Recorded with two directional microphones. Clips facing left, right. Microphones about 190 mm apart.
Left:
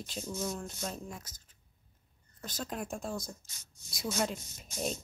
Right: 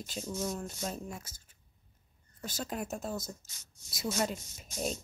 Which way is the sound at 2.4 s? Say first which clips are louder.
Right 1 dB; 5° right (ahead or behind).